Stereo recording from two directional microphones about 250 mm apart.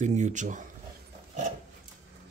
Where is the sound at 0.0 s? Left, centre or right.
Right.